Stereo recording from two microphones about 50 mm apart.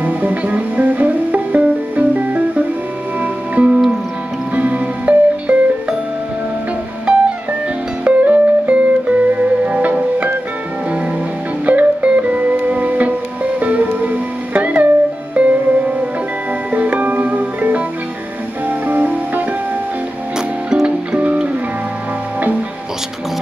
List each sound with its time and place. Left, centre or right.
0.0 s music: right
7.1 s music: right
11.6 s music: right
16.7 s music: right
20.3 s music: centre
21.2 s music: right